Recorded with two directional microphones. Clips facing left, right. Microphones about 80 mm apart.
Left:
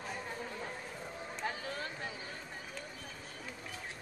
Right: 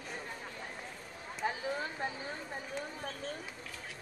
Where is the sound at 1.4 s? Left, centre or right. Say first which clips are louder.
Right 5 dB; centre.